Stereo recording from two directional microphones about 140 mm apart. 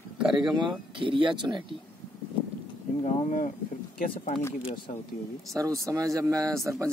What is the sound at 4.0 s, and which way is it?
Speech, 70° left (ahead or behind).